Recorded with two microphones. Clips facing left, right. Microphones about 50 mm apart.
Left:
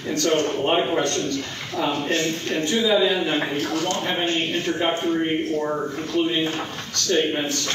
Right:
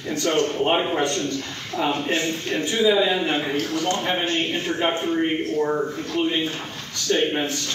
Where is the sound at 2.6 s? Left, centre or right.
Centre.